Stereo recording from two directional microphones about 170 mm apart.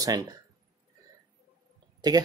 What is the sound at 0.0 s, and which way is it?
Speech, 20° right (ahead or behind).